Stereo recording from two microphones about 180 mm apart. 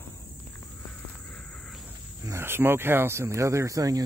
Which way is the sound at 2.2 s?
15° right (ahead or behind).